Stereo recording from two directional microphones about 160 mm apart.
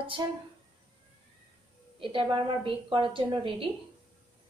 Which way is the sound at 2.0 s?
30° right (ahead or behind).